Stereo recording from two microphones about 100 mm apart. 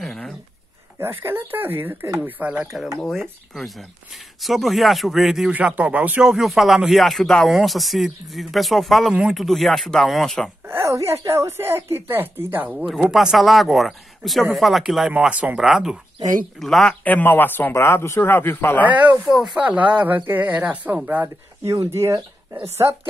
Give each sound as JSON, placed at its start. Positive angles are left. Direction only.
{"t": 0.0, "sound": "a sound", "side_deg": 5}
{"t": 0.9, "sound": "a woman's voice", "side_deg": -25}
{"t": 3.5, "sound": "speech", "side_deg": 0}
{"t": 5.5, "sound": "speech", "side_deg": -15}
{"t": 6.2, "sound": "speech", "side_deg": -5}
{"t": 10.6, "sound": "a woman's voice", "side_deg": -25}
{"t": 12.7, "sound": "speech", "side_deg": -5}
{"t": 17.0, "sound": "a man's voice", "side_deg": 15}
{"t": 18.9, "sound": "speech", "side_deg": -15}
{"t": 19.2, "sound": "speech", "side_deg": 0}
{"t": 19.5, "sound": "speech", "side_deg": -15}
{"t": 21.6, "sound": "speech", "side_deg": -30}